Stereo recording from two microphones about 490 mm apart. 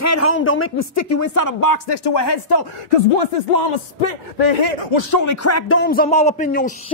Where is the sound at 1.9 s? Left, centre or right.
Left.